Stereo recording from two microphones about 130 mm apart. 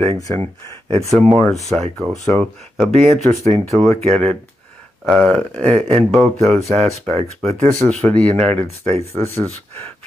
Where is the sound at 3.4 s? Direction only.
60° right (ahead or behind).